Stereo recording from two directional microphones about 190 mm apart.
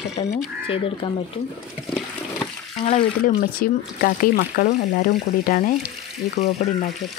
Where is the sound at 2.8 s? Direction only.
40° left (ahead or behind).